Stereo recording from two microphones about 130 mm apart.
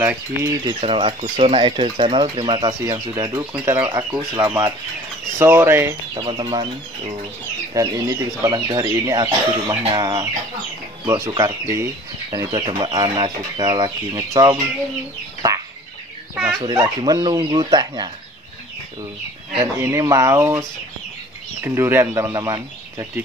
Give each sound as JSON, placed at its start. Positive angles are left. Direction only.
{"t": 0.0, "sound": "speech", "side_deg": -15}
{"t": 0.8, "sound": "speech", "side_deg": -45}
{"t": 5.4, "sound": "speech", "side_deg": -20}
{"t": 6.1, "sound": "speech", "side_deg": -35}
{"t": 7.7, "sound": "speech", "side_deg": -25}
{"t": 12.5, "sound": "speech", "side_deg": -35}
{"t": 15.4, "sound": "chicken", "side_deg": -30}
{"t": 16.3, "sound": "speech", "side_deg": -5}
{"t": 16.6, "sound": "speech", "side_deg": -35}
{"t": 19.6, "sound": "speech", "side_deg": -25}
{"t": 21.6, "sound": "speech", "side_deg": -20}